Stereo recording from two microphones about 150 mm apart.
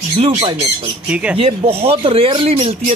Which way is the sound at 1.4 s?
40° right (ahead or behind).